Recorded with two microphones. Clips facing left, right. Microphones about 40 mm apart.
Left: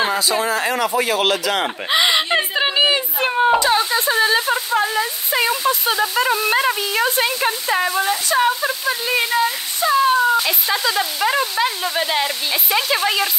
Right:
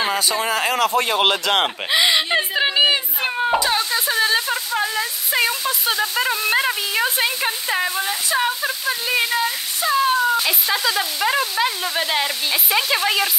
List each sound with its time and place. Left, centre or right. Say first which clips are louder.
0.4 s speech: left 1 dB; right
1.0 s speech: even; centre
1.9 s a sound: left 3 dB; centre
3.5 s speech: left 3 dB; centre